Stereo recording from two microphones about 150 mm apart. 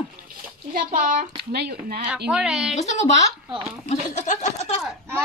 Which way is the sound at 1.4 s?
90° right.